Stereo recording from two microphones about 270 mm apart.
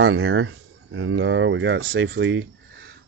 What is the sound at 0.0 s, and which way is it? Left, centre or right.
Speech, right.